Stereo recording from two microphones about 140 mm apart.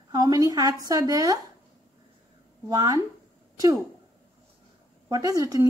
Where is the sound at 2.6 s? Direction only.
25° right (ahead or behind).